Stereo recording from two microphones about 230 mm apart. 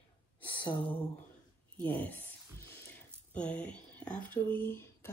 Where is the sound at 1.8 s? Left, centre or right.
Centre.